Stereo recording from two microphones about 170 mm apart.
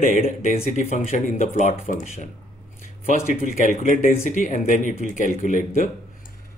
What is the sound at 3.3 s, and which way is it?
Speech, 55° left (ahead or behind).